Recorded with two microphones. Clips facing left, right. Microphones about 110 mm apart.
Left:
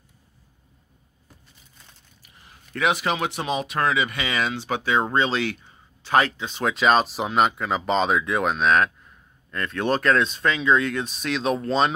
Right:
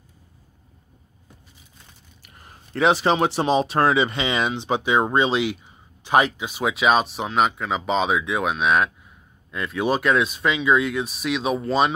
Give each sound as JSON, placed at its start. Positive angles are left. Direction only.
{"t": 2.2, "sound": "zipper", "side_deg": -50}
{"t": 2.7, "sound": "speech", "side_deg": -30}